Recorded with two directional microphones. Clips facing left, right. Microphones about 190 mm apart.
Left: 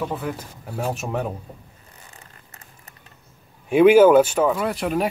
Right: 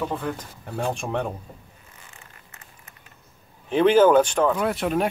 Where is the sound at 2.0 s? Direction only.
35° left (ahead or behind).